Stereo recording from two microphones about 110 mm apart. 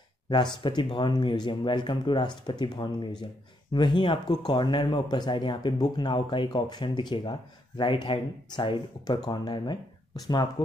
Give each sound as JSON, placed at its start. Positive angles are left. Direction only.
{"t": 0.6, "sound": "speech", "side_deg": 50}